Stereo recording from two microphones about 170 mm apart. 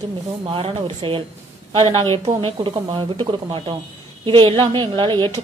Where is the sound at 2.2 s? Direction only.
30° right (ahead or behind).